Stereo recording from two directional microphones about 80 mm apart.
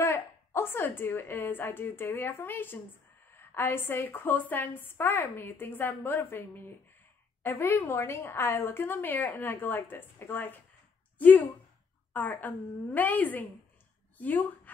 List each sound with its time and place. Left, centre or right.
0.0 s a woman's voice: left